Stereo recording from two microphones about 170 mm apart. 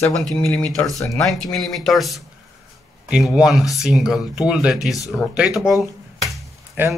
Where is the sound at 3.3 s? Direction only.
Centre (ahead or behind).